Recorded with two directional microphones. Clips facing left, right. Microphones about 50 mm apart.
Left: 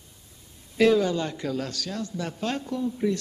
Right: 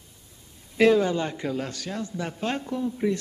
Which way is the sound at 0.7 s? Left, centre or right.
Right.